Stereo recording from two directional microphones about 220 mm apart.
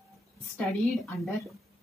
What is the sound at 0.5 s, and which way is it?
A woman's voice, centre (ahead or behind).